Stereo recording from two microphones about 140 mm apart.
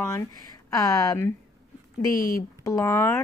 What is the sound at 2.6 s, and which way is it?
Speech, 20° left (ahead or behind).